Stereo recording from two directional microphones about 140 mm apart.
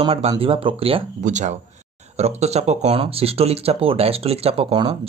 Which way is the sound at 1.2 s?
60° right (ahead or behind).